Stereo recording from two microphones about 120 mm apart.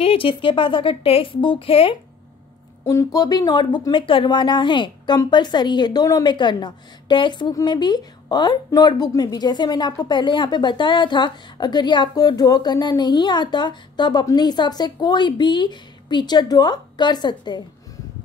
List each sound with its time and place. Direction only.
0.0 s a woman's voice: 50° left (ahead or behind)
2.8 s a woman's voice: 25° left (ahead or behind)